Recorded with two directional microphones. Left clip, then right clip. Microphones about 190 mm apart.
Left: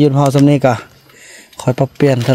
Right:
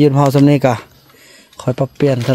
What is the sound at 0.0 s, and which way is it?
Speech, 5° right (ahead or behind).